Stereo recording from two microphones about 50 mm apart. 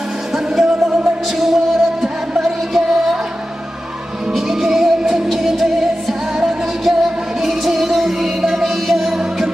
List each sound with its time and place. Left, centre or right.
0.3 s music: centre
4.3 s music: centre